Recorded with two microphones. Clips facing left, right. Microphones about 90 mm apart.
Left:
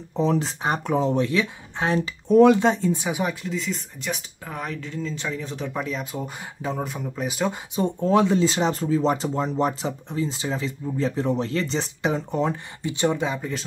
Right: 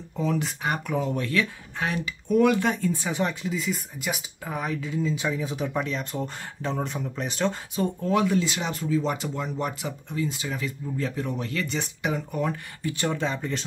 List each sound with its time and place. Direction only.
0.1 s speech: 30° left (ahead or behind)
3.1 s speech: 10° left (ahead or behind)
3.4 s speech: 5° right (ahead or behind)
7.7 s speech: 25° left (ahead or behind); by 13.7 s 5° left (ahead or behind)